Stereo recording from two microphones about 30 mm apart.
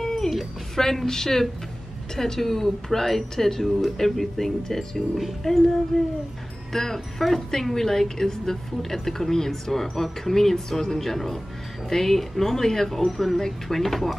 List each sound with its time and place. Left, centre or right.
0.0 s music: centre
0.7 s speech: centre